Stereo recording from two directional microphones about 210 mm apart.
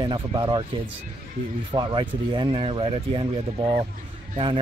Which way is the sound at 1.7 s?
20° right (ahead or behind).